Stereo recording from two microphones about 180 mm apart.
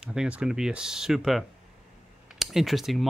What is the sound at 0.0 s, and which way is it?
Speech, 5° right (ahead or behind).